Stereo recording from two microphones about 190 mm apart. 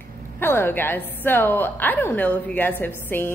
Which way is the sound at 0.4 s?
10° left (ahead or behind).